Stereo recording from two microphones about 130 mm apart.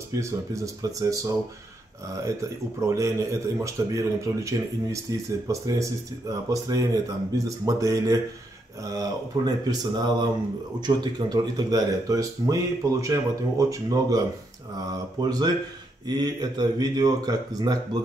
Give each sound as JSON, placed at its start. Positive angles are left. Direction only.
{"t": 0.2, "sound": "speech", "side_deg": -25}